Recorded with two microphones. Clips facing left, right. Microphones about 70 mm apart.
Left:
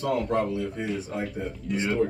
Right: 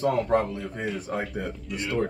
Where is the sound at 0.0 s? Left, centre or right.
Right.